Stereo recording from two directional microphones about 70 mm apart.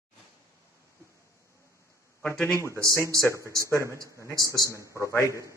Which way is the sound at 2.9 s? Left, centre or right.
Left.